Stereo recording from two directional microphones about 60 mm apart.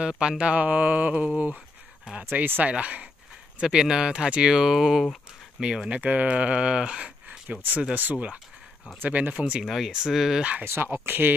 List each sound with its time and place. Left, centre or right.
0.0 s speech: centre
2.3 s speech: right
9.3 s speech: centre
10.6 s speech: right